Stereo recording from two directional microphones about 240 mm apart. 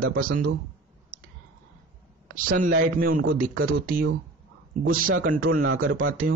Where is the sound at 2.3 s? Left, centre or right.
Right.